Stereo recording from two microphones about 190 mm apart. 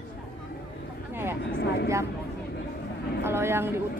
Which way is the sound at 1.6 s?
60° left (ahead or behind).